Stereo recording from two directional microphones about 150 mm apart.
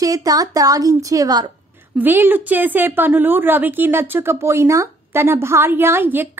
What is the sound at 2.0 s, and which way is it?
A woman's voice, 15° right (ahead or behind).